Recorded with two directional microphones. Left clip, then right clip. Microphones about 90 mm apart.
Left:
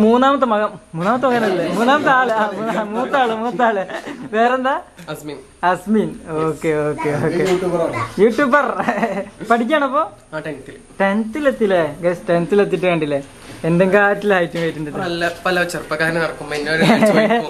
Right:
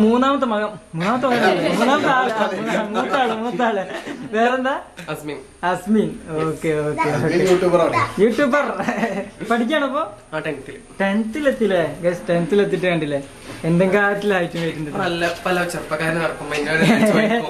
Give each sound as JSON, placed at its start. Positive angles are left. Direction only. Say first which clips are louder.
{"t": 0.0, "sound": "a woman's voice", "louder": "left 4 dB", "side_deg": 20}
{"t": 7.2, "sound": "a man's voice", "louder": "right 2 dB", "side_deg": -15}
{"t": 8.2, "sound": "a woman's voice", "louder": "left 6 dB", "side_deg": 20}